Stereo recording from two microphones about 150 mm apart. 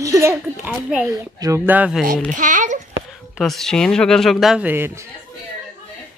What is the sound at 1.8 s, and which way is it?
Speech, 5° right (ahead or behind).